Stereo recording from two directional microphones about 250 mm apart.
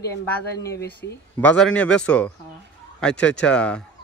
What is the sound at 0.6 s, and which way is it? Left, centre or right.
Speech, centre.